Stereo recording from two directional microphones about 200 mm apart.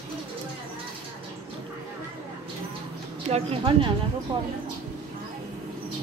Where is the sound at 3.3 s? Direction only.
30° right (ahead or behind).